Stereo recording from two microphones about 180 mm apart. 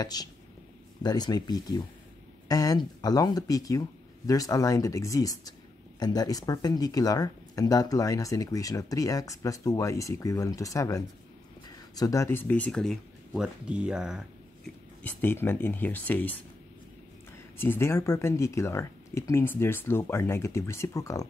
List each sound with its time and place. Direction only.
0.0 s speech: 20° left (ahead or behind); by 14.2 s 5° right (ahead or behind)
15.0 s speech: 10° left (ahead or behind)
17.6 s speech: 15° left (ahead or behind)